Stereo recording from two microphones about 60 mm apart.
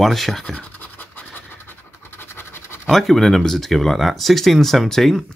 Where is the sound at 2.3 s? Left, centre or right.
Left.